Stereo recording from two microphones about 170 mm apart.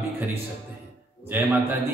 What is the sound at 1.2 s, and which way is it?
Speech, 10° right (ahead or behind).